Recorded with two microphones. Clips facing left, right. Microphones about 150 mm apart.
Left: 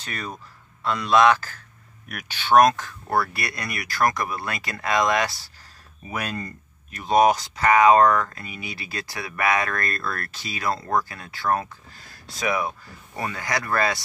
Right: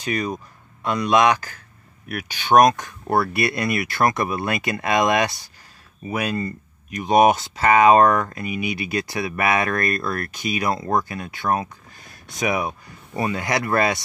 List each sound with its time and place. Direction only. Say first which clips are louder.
0.0 s speech: right 9 dB; 15° right (ahead or behind)
6.1 s speech: right 6 dB; 10° right (ahead or behind)